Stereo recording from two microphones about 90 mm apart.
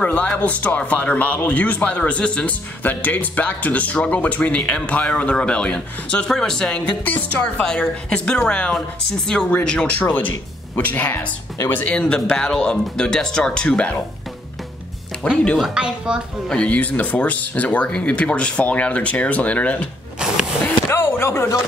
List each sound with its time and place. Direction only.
0.0 s speech: 15° left (ahead or behind)
7.1 s speech: 20° left (ahead or behind)
15.5 s speech: 5° right (ahead or behind)
16.4 s speech: 10° left (ahead or behind)
20.9 s speech: 30° left (ahead or behind)